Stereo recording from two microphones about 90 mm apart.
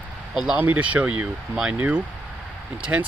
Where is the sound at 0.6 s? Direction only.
15° right (ahead or behind).